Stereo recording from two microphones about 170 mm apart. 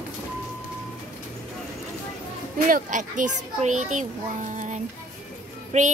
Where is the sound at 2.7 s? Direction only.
50° right (ahead or behind).